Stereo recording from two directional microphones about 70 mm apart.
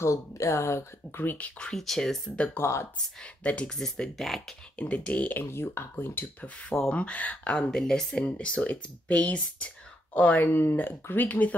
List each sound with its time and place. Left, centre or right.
0.0 s speech: left
1.1 s speech: left
1.6 s speech: centre
2.5 s speech: left
3.4 s speech: centre
4.7 s speech: centre
5.4 s speech: left
6.7 s speech: centre
7.0 s speech: left
7.7 s speech: centre